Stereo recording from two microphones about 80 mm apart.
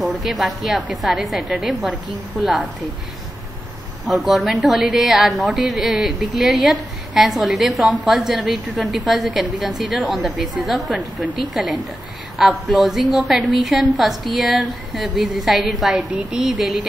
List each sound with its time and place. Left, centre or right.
0.0 s a woman's voice: centre
4.1 s a woman's voice: centre
16.1 s a woman's voice: centre
16.3 s a woman's voice: centre